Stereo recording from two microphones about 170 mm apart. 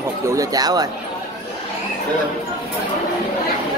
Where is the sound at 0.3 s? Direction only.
20° right (ahead or behind).